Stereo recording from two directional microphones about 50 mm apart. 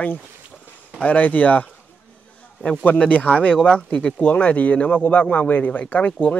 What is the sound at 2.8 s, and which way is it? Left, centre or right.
Speech, left.